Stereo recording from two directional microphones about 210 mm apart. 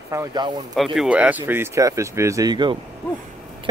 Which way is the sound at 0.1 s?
15° right (ahead or behind).